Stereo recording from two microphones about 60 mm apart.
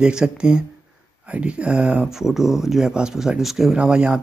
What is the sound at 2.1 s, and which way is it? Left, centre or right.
Speech, centre.